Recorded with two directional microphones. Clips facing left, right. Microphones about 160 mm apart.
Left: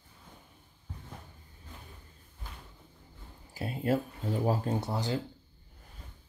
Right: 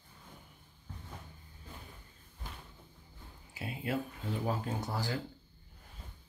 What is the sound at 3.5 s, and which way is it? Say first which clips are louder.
Speech: left 7 dB; 40° left (ahead or behind).